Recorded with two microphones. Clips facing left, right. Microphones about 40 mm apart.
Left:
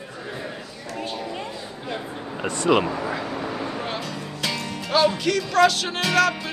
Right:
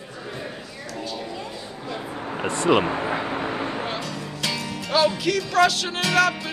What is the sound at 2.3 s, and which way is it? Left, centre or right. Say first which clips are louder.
Speech: right 1 dB; right.